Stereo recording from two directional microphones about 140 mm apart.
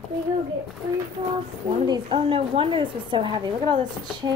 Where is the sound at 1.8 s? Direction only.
35° right (ahead or behind).